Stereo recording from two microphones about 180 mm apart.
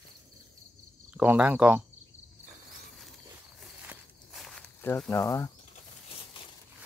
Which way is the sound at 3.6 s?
5° right (ahead or behind).